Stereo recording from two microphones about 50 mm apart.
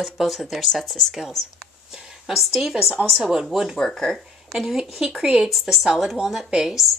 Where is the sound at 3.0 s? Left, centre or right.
Right.